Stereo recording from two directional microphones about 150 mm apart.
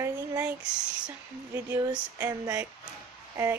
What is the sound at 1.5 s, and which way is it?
Speech, 15° right (ahead or behind).